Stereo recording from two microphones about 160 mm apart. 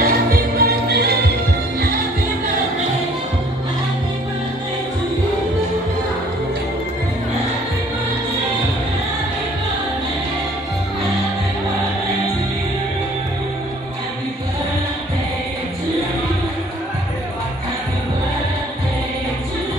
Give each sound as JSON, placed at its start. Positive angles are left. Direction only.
{"t": 0.0, "sound": "music", "side_deg": -70}